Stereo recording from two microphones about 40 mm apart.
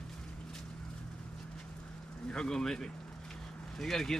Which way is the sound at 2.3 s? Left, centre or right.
Centre.